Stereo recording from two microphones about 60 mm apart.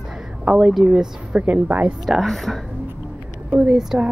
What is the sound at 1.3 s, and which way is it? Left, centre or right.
Speech, right.